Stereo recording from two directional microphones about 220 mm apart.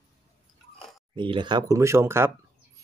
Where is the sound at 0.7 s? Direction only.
Centre (ahead or behind).